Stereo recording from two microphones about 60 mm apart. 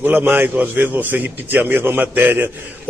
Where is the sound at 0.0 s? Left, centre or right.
Right.